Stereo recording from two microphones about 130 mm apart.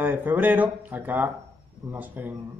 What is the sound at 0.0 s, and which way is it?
A man's voice, 15° right (ahead or behind).